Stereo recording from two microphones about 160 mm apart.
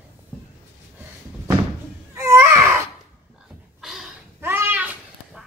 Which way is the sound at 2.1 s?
15° right (ahead or behind).